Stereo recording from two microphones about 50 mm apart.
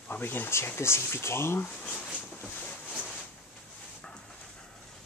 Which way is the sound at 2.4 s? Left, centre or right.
Left.